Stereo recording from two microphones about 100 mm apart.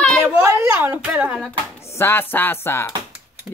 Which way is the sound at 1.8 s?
25° left (ahead or behind).